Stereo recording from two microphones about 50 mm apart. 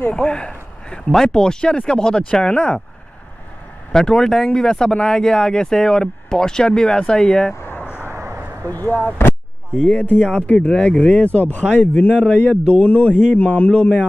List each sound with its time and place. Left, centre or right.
0.1 s speech: centre
3.9 s speech: centre
8.0 s vehicle: right
8.7 s speech: left
9.8 s speech: left